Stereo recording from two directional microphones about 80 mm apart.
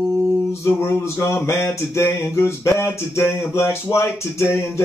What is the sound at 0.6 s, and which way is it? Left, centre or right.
Speech, left.